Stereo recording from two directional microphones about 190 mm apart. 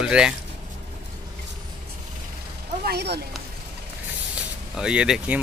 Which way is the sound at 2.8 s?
60° right (ahead or behind).